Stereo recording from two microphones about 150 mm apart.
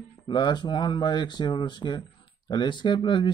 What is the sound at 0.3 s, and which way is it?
Speech, 30° left (ahead or behind).